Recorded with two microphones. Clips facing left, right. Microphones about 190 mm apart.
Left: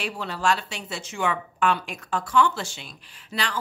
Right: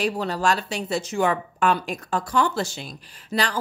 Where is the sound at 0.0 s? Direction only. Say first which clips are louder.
Right 4 dB; 40° right (ahead or behind).